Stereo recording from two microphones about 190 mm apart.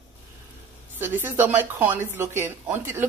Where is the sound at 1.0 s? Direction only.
10° right (ahead or behind).